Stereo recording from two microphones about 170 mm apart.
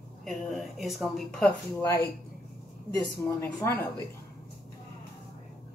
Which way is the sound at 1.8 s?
20° left (ahead or behind).